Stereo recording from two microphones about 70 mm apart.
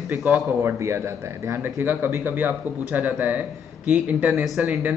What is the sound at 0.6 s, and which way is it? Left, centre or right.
Speech, right.